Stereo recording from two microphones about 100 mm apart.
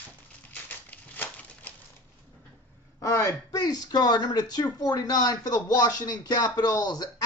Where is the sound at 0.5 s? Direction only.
15° left (ahead or behind).